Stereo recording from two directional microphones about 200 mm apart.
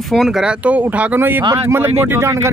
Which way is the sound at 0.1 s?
Centre (ahead or behind).